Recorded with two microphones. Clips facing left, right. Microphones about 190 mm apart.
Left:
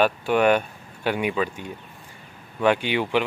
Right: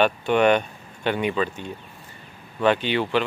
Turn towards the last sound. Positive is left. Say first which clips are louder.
# even
turn(degrees=15)  # may be behind; listen again after turning